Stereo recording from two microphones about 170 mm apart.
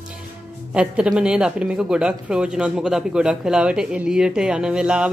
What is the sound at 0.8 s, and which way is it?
Speech, 5° right (ahead or behind).